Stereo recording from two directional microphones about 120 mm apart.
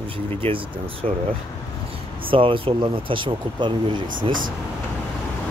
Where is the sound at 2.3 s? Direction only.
45° right (ahead or behind).